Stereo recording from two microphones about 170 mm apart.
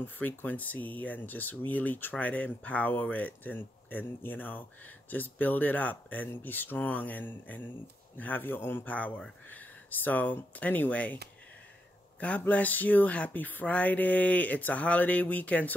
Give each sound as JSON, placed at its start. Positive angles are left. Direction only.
{"t": 0.0, "sound": "speech", "side_deg": 10}
{"t": 12.2, "sound": "speech", "side_deg": 10}